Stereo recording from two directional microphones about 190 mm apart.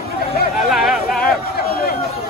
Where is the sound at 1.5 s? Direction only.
55° left (ahead or behind).